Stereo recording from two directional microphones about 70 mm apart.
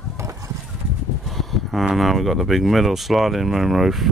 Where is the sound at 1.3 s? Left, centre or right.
Centre.